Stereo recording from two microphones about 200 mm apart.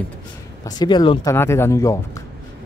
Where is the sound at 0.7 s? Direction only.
20° left (ahead or behind).